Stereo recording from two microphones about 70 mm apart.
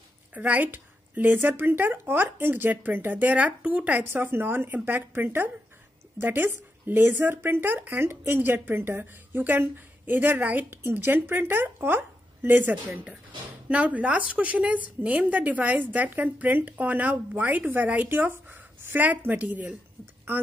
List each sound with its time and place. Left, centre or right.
0.3 s a woman's voice: right
4.0 s a woman's voice: right